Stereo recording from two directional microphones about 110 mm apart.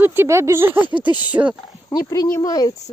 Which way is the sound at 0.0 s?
20° right (ahead or behind).